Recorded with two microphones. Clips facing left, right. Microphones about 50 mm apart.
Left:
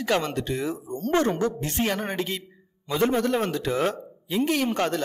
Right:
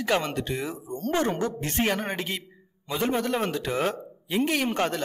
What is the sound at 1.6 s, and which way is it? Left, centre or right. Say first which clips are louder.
A man's voice: even; right.